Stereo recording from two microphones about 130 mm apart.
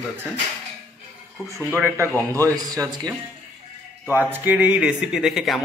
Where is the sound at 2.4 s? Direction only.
25° right (ahead or behind).